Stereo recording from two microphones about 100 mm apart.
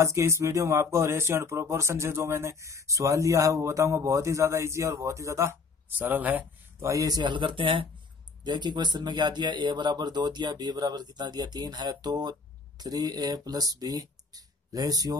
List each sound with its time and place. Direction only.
0.0 s speech: 30° right (ahead or behind)
5.9 s speech: 20° right (ahead or behind)
6.8 s speech: 35° right (ahead or behind); by 7.9 s 60° right (ahead or behind)
8.5 s speech: 45° right (ahead or behind)